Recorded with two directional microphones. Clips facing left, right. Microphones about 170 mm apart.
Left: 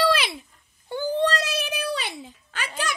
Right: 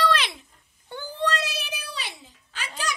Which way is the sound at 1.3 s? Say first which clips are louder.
Left 4 dB; 50° left (ahead or behind).